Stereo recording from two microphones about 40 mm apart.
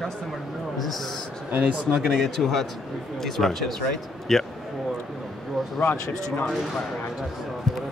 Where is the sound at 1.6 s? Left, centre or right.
Right.